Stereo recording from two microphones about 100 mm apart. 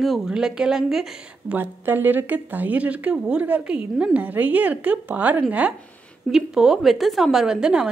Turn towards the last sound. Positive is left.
turn(degrees=-10)  # may be behind; listen again after turning